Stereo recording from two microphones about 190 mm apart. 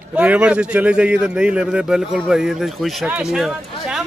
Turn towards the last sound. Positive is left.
turn(degrees=0)  # may be behind; listen again after turning